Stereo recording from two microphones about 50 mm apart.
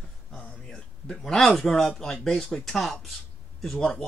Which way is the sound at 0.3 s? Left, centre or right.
Left.